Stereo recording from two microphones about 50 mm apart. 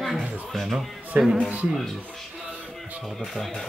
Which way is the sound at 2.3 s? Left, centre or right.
Right.